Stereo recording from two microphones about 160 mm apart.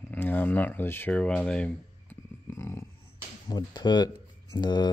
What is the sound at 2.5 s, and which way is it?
Speech, 15° left (ahead or behind).